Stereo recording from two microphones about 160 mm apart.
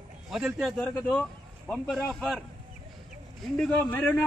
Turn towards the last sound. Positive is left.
turn(degrees=10)  # may be behind; listen again after turning